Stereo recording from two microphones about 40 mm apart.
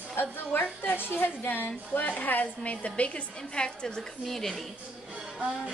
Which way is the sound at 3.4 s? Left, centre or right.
Left.